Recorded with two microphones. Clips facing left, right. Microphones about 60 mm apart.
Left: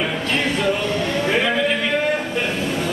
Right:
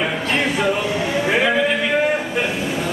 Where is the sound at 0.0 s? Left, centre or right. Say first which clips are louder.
Right 1 dB; centre.